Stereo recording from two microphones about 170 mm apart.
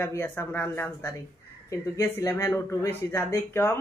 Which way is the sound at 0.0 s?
10° left (ahead or behind).